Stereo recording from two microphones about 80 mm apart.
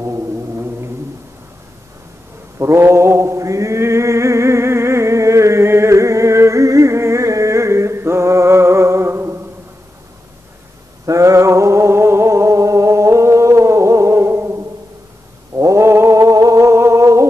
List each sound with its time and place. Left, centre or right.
0.0 s music: right
2.6 s chant: right
11.1 s music: right
15.6 s a sound: right